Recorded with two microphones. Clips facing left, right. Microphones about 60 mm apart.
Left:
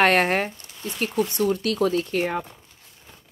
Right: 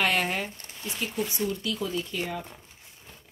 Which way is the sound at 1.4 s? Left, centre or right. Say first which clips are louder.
Left 10 dB; left.